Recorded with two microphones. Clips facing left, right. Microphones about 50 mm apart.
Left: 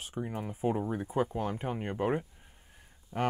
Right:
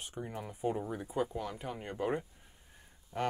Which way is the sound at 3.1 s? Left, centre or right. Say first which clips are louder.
Left 3 dB; centre.